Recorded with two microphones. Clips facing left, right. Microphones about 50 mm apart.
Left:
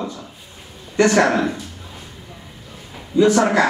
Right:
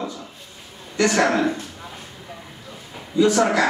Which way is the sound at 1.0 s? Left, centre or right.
Centre.